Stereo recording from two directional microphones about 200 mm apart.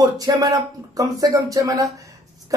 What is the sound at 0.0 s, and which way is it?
Speech, 20° right (ahead or behind).